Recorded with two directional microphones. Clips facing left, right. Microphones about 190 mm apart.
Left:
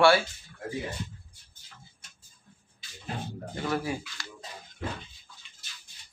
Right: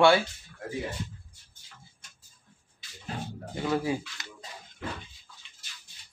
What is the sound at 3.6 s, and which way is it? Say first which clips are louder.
Speech: right 3 dB; 20° right (ahead or behind).